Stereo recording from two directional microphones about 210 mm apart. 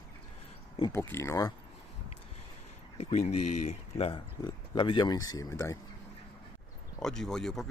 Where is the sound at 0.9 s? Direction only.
10° left (ahead or behind).